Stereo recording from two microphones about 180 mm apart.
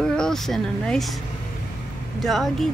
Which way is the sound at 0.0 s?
5° left (ahead or behind).